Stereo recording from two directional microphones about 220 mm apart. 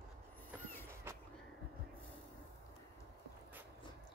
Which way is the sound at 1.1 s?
10° right (ahead or behind).